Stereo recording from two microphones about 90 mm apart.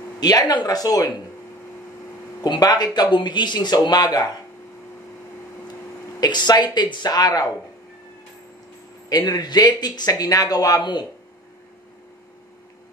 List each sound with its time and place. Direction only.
0.2 s speech: 50° left (ahead or behind)
2.4 s speech: 50° left (ahead or behind)
6.2 s speech: 50° left (ahead or behind)
9.1 s speech: 45° left (ahead or behind)